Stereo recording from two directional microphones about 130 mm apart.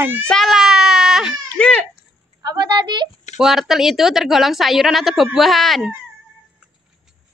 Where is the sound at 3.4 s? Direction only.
5° right (ahead or behind).